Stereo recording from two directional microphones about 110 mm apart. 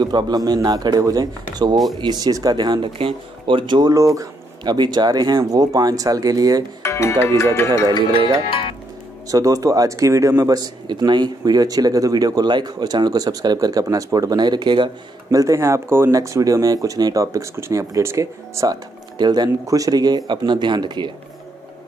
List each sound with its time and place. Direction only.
0.0 s speech: 40° right (ahead or behind)
3.9 s speech: 30° right (ahead or behind)
6.8 s speech: 25° left (ahead or behind)
9.3 s speech: 30° right (ahead or behind)
15.3 s speech: 30° right (ahead or behind)
19.1 s speech: 40° right (ahead or behind)